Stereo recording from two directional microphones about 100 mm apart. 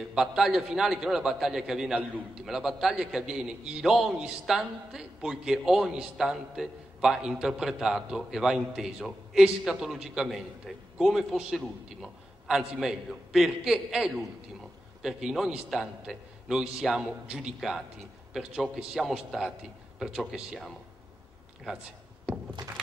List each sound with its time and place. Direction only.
0.1 s a man's voice: 5° right (ahead or behind)
2.0 s a man's voice: 15° right (ahead or behind)
2.4 s a man's voice: 5° right (ahead or behind)